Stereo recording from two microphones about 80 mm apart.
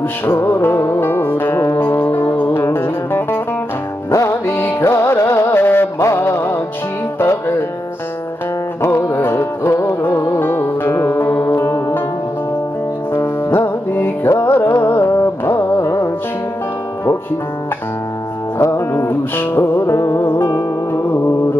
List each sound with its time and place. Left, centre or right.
0.4 s music: left
8.8 s music: left
13.1 s music: left
18.6 s music: left
20.2 s music: left